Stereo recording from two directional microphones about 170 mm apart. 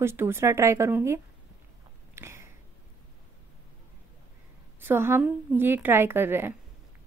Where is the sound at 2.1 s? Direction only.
15° right (ahead or behind).